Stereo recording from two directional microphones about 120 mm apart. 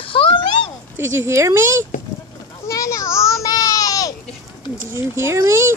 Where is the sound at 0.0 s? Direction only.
45° left (ahead or behind).